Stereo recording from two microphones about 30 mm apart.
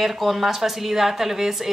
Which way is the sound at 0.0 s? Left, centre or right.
Centre.